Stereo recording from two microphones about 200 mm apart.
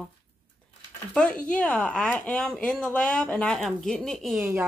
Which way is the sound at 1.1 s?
5° left (ahead or behind).